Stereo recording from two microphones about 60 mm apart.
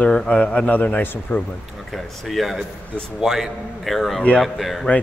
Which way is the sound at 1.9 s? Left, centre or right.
Centre.